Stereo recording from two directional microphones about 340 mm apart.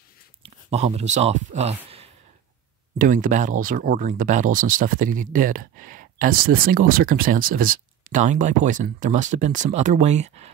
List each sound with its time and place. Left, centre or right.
0.4 s speech: centre